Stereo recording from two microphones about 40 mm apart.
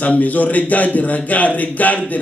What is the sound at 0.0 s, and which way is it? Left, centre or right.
Speech, left.